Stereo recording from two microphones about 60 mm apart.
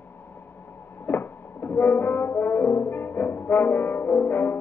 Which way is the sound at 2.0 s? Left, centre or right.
Left.